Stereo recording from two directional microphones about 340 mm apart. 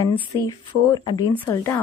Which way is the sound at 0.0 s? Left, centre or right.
Centre.